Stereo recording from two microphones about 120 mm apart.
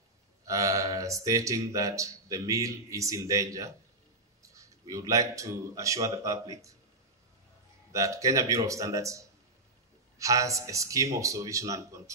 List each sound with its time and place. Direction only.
0.5 s speech: 25° right (ahead or behind)
7.9 s speech: 25° right (ahead or behind)